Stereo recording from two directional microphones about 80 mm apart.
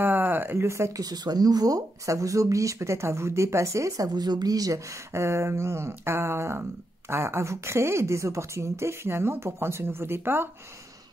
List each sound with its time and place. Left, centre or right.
0.0 s a sound: right
0.7 s speech: right
4.1 s speech: right